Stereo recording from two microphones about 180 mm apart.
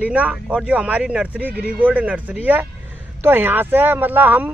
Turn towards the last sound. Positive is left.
turn(degrees=-10)  # may be behind; listen again after turning